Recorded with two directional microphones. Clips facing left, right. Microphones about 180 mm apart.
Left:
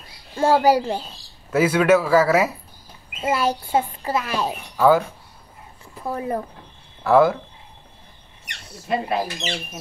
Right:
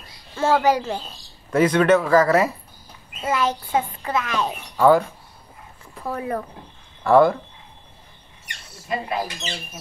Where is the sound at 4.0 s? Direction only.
30° left (ahead or behind).